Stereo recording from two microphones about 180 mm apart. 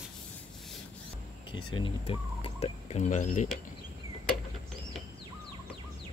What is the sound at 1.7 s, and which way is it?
Speech, 30° left (ahead or behind).